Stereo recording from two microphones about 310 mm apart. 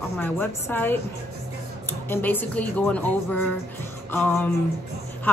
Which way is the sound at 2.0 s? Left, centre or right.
Centre.